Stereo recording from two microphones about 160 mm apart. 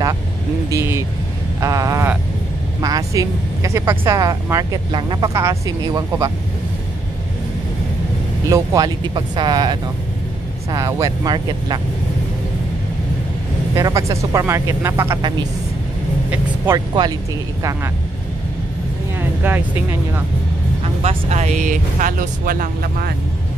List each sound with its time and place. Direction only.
0.7 s speech: 15° right (ahead or behind)
8.5 s speech: 20° right (ahead or behind)
13.7 s speech: 20° right (ahead or behind)
16.3 s vehicle: 15° right (ahead or behind)
19.4 s speech: 10° right (ahead or behind)
20.8 s speech: 40° right (ahead or behind); by 23.1 s 65° right (ahead or behind)